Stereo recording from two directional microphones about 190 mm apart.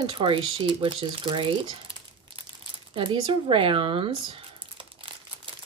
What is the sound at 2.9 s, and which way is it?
Speech, 25° right (ahead or behind).